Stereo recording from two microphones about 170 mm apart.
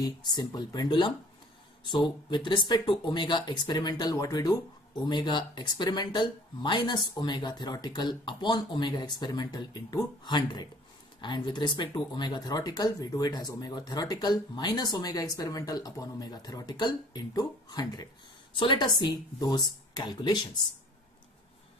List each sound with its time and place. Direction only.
0.0 s speech: 25° left (ahead or behind)